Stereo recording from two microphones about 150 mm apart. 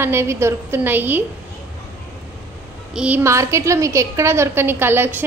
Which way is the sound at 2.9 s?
5° right (ahead or behind).